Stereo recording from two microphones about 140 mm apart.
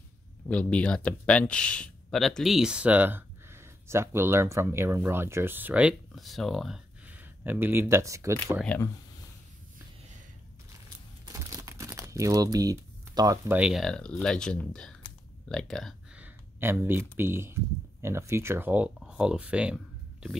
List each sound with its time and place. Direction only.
0.5 s speech: 10° left (ahead or behind)
7.1 s speech: 15° right (ahead or behind)
8.6 s speech: 15° left (ahead or behind)
11.2 s crumpling: 20° right (ahead or behind)
13.5 s speech: 5° right (ahead or behind)
16.2 s speech: 15° right (ahead or behind)